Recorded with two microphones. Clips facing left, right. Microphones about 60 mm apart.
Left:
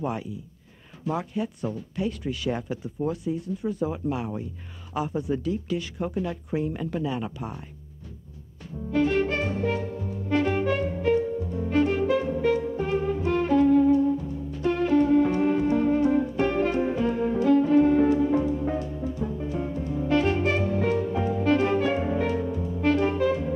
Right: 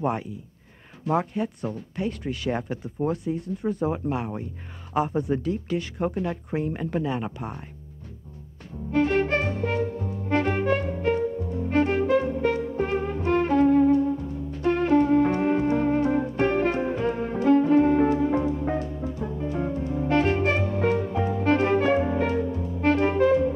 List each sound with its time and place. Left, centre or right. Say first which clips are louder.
0.0 s speech: right 3 dB; right
8.9 s music: right 1 dB; right
22.8 s clarinet: right 2 dB; right